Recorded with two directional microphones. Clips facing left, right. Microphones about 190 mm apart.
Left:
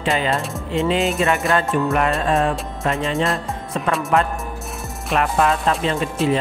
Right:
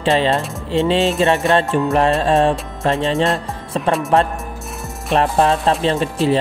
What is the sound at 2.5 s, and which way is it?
Music, centre (ahead or behind).